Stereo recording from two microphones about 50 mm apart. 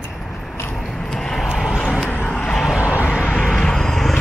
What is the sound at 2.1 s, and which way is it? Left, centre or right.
Vehicle, left.